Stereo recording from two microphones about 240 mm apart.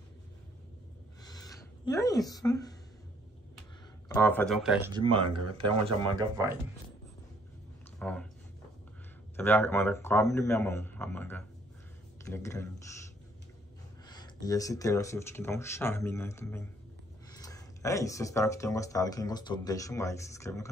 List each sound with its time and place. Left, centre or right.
1.2 s a sound: centre
4.1 s speech: centre
5.0 s speech: right
8.0 s speech: centre
9.4 s speech: centre
14.0 s speech: centre